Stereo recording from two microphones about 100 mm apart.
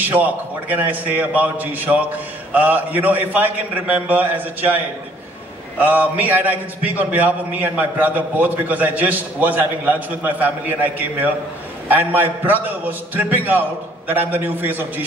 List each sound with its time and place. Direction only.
0.0 s a man's voice: 15° right (ahead or behind)